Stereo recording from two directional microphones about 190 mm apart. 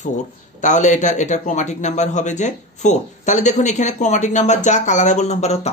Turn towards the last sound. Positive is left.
turn(degrees=35)  # may be behind; listen again after turning